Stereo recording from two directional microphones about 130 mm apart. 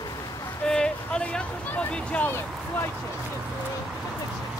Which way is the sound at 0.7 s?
5° left (ahead or behind).